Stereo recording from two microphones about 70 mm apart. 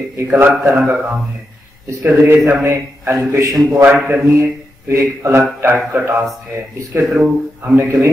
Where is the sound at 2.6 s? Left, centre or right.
Right.